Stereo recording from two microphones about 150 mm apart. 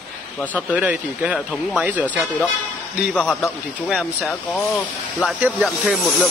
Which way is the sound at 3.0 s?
5° left (ahead or behind).